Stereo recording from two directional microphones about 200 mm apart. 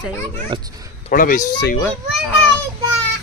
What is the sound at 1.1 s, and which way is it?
Speech, 40° left (ahead or behind).